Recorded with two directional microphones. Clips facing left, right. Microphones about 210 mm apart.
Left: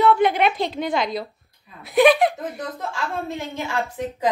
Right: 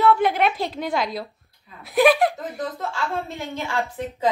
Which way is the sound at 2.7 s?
20° left (ahead or behind).